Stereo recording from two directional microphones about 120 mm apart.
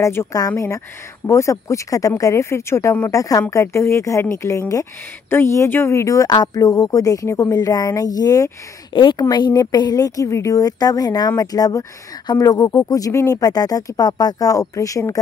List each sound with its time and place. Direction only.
0.0 s a woman's voice: 25° left (ahead or behind)